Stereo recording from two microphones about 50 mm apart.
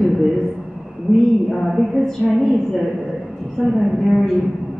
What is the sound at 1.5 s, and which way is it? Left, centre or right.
Speech, centre.